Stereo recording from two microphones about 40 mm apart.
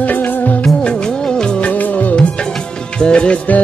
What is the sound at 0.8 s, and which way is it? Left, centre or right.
Music of bollywood, centre.